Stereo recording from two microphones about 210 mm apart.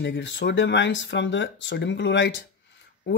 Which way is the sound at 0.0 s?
55° left (ahead or behind).